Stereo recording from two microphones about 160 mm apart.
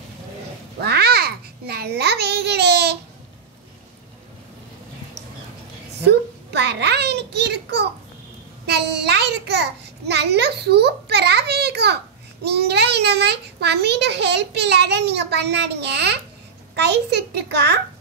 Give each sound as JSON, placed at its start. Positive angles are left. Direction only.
{"t": 0.7, "sound": "babbling", "side_deg": -85}
{"t": 6.5, "sound": "a sound", "side_deg": -90}
{"t": 16.7, "sound": "a child's voice", "side_deg": -90}